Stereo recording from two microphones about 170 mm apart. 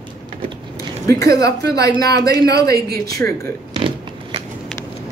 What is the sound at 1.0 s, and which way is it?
Speech, 20° left (ahead or behind).